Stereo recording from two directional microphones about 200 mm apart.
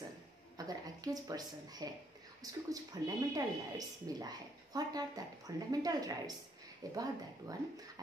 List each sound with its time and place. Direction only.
0.6 s a woman's voice: 20° right (ahead or behind)